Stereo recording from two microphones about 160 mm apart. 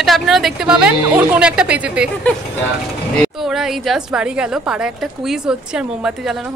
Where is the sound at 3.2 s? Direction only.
Centre (ahead or behind).